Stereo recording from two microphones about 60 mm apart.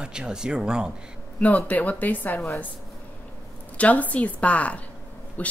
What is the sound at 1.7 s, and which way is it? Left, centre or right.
Speech, left.